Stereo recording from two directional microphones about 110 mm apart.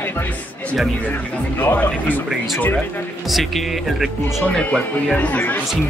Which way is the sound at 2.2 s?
Centre (ahead or behind).